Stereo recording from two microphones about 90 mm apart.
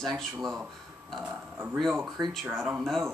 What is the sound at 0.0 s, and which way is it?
Speech, 5° left (ahead or behind).